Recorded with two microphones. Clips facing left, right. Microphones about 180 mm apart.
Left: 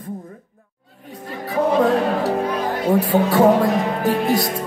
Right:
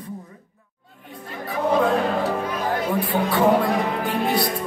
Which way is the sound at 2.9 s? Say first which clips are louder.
Left 8 dB; 45° left (ahead or behind).